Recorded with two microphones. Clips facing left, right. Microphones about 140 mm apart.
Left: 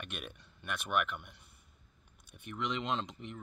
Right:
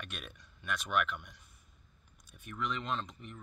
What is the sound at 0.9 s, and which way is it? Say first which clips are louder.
Speech: even; 10° left (ahead or behind).